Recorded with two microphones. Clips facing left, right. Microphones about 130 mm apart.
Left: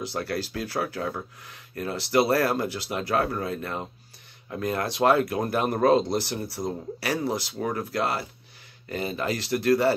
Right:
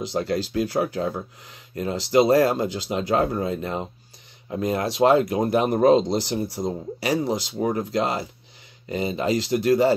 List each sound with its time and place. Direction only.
0.0 s speech: 15° right (ahead or behind)